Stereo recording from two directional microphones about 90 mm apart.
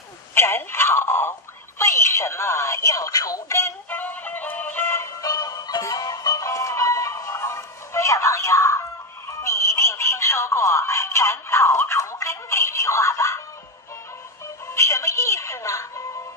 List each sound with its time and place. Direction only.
0.3 s telephone: 25° left (ahead or behind)
1.8 s a sound: 30° left (ahead or behind)
4.0 s music: 20° left (ahead or behind)
5.2 s music: 45° left (ahead or behind)
9.4 s a sound: 35° left (ahead or behind)
14.7 s music: 35° left (ahead or behind)